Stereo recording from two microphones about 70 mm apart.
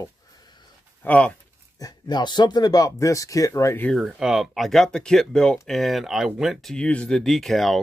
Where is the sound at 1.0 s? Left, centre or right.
Left.